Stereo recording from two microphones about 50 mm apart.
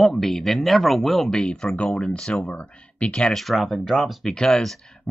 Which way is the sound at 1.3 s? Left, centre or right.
Centre.